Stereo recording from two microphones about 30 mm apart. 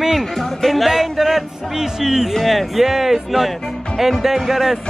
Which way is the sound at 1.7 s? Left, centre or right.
Centre.